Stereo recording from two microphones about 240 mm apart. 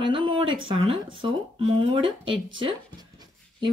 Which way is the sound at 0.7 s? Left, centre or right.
Right.